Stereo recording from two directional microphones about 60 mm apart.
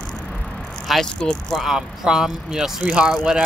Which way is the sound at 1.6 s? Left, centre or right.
Centre.